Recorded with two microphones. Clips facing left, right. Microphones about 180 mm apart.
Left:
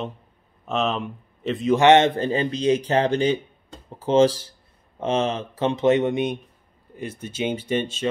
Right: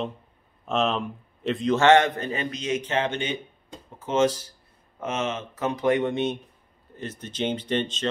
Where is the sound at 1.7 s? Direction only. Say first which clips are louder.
Left 3 dB; 20° left (ahead or behind).